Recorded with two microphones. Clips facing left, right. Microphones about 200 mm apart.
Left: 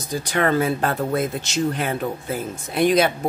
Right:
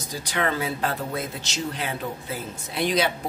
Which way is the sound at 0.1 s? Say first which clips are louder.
Left 6 dB; 50° left (ahead or behind).